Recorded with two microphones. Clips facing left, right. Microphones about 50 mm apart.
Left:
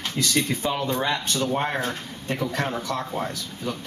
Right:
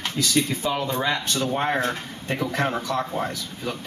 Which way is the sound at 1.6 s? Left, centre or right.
Right.